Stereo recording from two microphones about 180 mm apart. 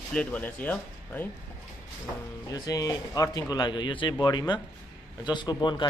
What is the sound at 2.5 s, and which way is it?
Speech, 20° left (ahead or behind).